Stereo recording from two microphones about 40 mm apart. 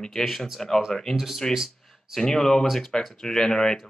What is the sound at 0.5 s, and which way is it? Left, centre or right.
Speech, centre.